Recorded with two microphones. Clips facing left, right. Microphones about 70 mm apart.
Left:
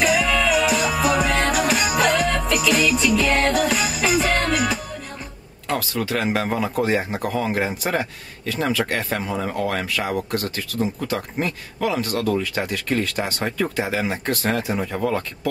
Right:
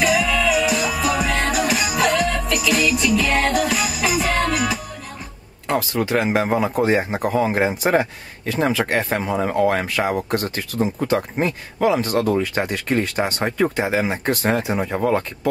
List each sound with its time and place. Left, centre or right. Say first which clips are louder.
0.0 s music: right 1 dB; centre
5.7 s speech: right 3 dB; right